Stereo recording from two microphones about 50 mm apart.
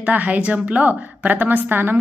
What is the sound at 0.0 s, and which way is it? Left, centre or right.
Speech, right.